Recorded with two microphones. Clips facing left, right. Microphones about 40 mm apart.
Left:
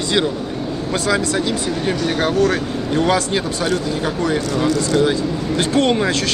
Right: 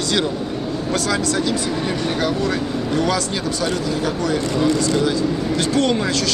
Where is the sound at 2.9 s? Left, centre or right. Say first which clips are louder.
Left 5 dB; left.